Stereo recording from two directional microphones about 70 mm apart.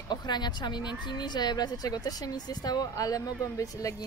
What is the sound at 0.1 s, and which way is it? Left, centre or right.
A woman's voice, left.